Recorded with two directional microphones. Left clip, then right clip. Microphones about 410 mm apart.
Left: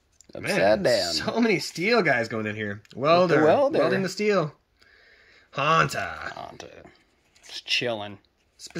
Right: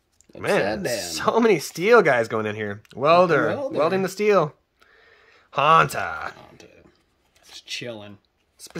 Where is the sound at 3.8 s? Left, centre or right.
Right.